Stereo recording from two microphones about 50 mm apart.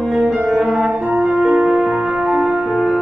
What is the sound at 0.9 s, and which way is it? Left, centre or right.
Music, right.